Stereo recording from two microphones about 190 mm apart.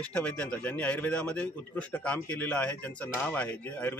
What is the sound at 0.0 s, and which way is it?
A man's voice, 5° left (ahead or behind).